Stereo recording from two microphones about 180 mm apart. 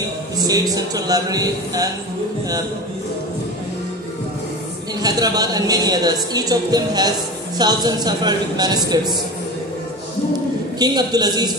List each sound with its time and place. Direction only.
0.4 s speech: 20° right (ahead or behind)
5.0 s speech: 20° right (ahead or behind)
10.8 s speech: 20° right (ahead or behind)